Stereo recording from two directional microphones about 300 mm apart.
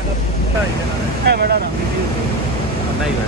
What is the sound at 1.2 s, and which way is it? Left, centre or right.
Speech, right.